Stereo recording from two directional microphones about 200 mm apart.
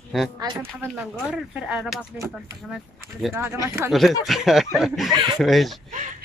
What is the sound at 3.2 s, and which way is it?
Speech, centre (ahead or behind).